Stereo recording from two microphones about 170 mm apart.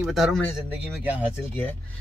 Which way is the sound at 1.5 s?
10° left (ahead or behind).